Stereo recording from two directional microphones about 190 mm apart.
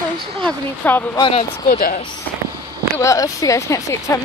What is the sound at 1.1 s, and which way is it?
Speech, 25° left (ahead or behind).